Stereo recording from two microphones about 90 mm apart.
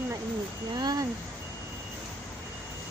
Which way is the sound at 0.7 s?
50° right (ahead or behind).